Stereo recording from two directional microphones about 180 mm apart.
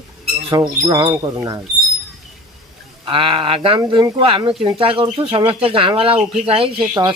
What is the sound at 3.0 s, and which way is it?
Speech, 30° right (ahead or behind).